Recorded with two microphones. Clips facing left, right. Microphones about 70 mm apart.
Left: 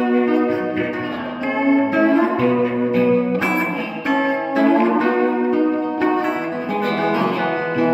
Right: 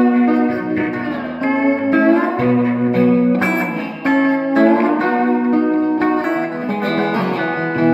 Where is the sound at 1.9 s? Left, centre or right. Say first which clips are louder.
Right 2 dB; right.